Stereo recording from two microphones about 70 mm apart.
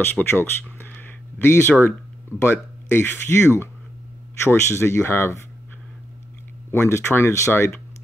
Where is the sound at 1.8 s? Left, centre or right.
Left.